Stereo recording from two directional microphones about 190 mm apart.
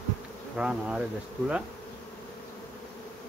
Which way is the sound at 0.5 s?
5° right (ahead or behind).